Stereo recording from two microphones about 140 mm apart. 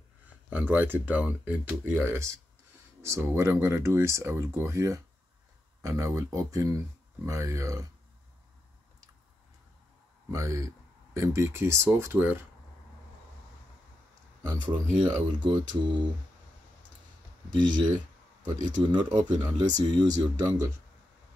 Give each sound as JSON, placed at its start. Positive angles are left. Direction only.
{"t": 0.5, "sound": "speech", "side_deg": -10}
{"t": 10.3, "sound": "speech", "side_deg": -20}
{"t": 14.7, "sound": "speech", "side_deg": -30}
{"t": 17.5, "sound": "speech", "side_deg": -30}